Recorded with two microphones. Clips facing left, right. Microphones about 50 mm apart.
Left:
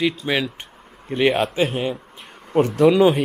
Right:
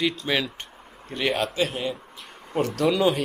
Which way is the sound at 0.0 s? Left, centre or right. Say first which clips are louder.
Left 3 dB; centre.